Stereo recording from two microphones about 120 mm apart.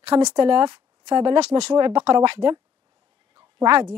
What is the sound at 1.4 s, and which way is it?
Speech, 65° right (ahead or behind).